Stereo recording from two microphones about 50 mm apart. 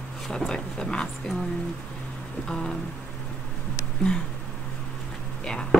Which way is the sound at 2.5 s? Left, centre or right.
Centre.